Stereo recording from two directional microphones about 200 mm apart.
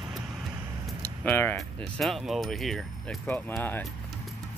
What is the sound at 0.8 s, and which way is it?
Speech, 10° left (ahead or behind).